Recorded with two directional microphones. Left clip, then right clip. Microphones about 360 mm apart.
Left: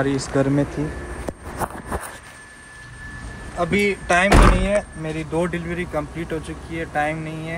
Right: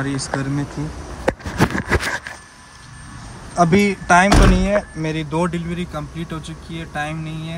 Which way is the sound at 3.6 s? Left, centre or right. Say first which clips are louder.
Right 4 dB; centre.